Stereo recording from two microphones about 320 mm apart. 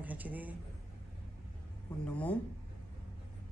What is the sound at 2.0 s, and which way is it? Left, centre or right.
Speech, centre.